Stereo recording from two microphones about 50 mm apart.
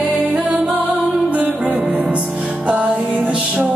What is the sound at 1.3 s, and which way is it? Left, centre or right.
Music, right.